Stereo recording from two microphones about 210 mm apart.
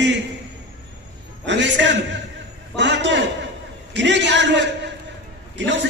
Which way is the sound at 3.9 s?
60° right (ahead or behind).